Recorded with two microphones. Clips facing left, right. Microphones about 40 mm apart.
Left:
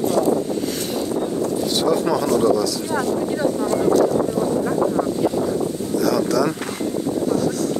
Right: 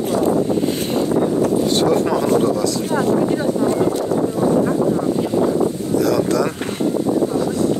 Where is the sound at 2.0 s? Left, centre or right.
Right.